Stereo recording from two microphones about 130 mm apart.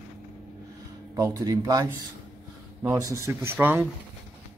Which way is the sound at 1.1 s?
25° right (ahead or behind).